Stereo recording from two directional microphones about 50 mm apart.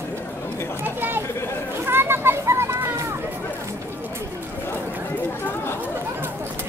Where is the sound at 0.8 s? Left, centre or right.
Right.